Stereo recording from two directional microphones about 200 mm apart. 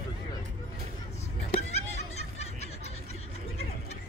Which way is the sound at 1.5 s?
35° left (ahead or behind).